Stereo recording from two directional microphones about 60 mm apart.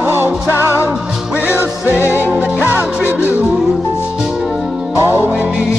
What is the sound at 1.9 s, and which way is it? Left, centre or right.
Music, left.